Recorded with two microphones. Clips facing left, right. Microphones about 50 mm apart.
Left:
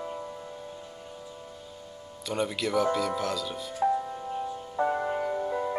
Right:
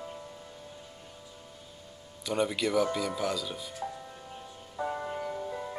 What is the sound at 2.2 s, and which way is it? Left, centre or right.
Speech, centre.